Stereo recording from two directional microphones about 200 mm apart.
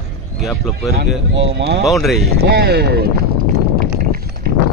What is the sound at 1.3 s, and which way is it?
Speech, 60° right (ahead or behind).